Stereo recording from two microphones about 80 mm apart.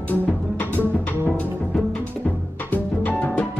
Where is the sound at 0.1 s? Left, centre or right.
Left.